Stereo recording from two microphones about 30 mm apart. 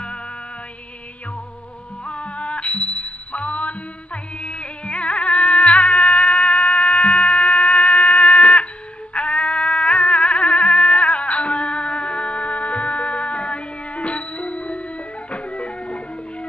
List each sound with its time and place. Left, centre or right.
2.0 s music: left